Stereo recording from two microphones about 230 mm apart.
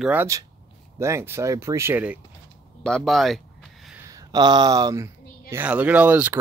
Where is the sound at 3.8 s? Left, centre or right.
Centre.